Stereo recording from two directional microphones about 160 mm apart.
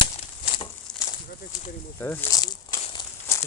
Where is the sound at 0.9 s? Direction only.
5° left (ahead or behind).